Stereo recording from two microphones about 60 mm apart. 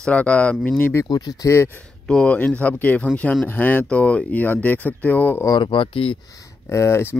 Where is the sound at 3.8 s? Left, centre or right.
Left.